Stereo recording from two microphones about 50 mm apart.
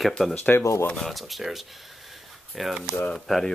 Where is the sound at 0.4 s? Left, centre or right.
Left.